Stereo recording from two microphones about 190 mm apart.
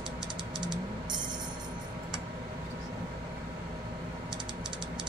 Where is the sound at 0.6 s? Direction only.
25° right (ahead or behind).